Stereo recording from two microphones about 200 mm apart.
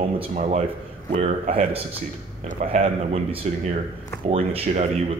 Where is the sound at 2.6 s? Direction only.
30° right (ahead or behind).